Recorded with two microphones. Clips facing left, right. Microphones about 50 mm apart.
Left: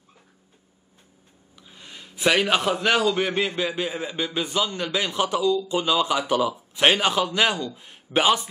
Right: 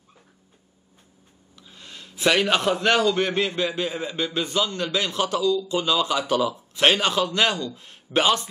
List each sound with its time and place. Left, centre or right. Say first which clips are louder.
1.6 s a man's voice: even; centre